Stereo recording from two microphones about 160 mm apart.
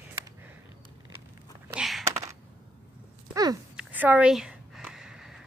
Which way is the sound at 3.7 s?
10° right (ahead or behind).